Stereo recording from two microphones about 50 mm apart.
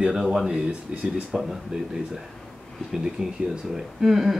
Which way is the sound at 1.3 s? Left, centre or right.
Centre.